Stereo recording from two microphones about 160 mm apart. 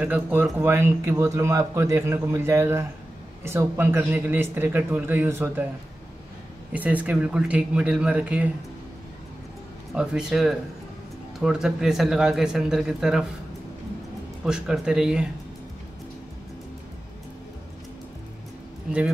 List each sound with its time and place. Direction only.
0.0 s speech: 10° right (ahead or behind)
6.7 s speech: 10° right (ahead or behind)
9.9 s speech: 5° right (ahead or behind)
14.4 s speech: 5° right (ahead or behind)